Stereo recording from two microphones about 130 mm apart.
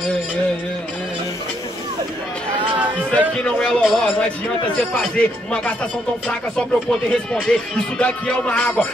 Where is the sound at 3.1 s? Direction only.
10° left (ahead or behind).